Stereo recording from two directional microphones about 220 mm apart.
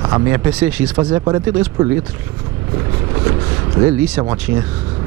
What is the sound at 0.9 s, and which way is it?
Speech, 20° right (ahead or behind).